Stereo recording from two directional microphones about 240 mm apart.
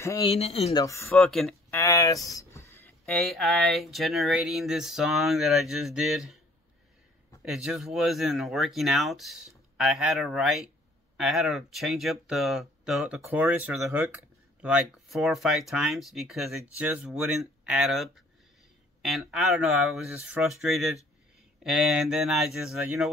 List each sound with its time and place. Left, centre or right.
0.0 s speech: centre
0.3 s speech: left
0.8 s speech: centre
1.1 s speech: centre
1.8 s speech: centre
7.4 s speech: centre